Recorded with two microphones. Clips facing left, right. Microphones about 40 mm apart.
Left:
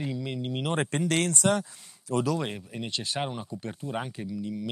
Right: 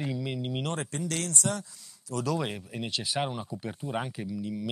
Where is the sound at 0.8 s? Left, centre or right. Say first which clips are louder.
Left 7 dB; left.